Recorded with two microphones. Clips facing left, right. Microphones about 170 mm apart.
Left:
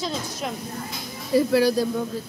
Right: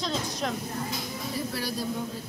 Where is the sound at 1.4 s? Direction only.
90° left.